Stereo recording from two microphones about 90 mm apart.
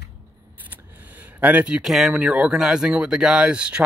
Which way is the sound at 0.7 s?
20° right (ahead or behind).